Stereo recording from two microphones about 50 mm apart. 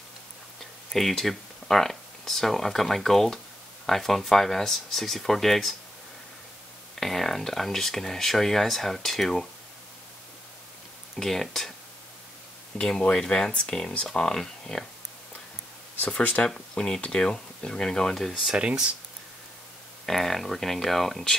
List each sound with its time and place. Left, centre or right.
0.9 s speech: centre
7.0 s speech: centre
11.1 s speech: centre
12.7 s speech: centre
16.0 s speech: left
16.4 s speech: centre
18.3 s speech: centre
18.6 s speech: right
20.1 s speech: centre